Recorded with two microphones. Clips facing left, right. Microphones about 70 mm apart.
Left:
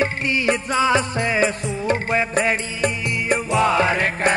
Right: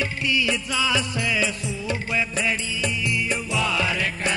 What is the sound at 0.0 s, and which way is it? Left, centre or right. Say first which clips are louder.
Music: left 4 dB; left.